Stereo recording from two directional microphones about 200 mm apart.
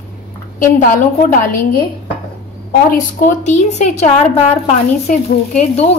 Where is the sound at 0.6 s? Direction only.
45° left (ahead or behind).